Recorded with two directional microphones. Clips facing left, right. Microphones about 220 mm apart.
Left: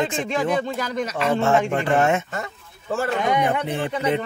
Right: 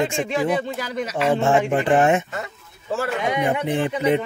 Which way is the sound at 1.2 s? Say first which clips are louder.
Right 1 dB; 15° right (ahead or behind).